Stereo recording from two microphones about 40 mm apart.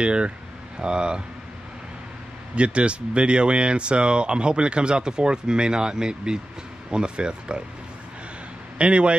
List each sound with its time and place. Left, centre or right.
0.0 s speech: right
2.5 s speech: right
8.7 s speech: right